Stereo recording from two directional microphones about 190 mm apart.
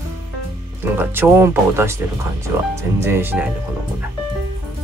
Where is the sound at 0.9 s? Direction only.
10° right (ahead or behind).